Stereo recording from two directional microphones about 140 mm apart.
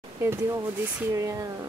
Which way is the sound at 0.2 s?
15° right (ahead or behind).